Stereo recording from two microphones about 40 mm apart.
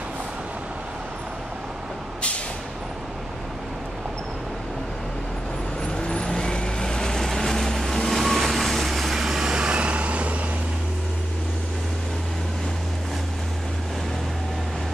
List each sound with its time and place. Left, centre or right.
5.9 s vehicle: left; by 9.1 s centre
9.1 s vehicle: centre; by 10.4 s right